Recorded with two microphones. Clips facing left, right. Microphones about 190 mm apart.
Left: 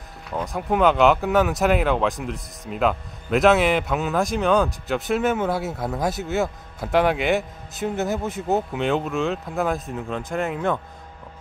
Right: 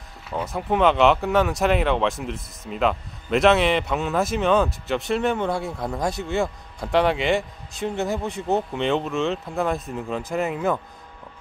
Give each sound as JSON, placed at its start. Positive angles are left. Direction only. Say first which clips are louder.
{"t": 0.3, "sound": "speech", "louder": "even", "side_deg": 0}